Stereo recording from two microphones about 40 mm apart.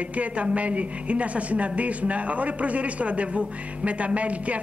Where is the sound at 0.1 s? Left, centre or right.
Right.